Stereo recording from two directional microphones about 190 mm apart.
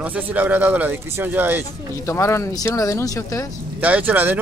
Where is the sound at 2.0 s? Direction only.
15° left (ahead or behind).